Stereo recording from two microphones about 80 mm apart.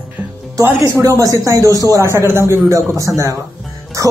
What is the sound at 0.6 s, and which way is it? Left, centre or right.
Speech, right.